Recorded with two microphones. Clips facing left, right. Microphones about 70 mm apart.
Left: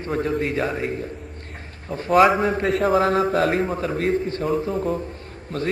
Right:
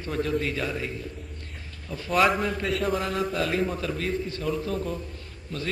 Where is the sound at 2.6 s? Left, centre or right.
Left.